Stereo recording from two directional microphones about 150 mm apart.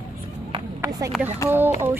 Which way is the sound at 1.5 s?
15° right (ahead or behind).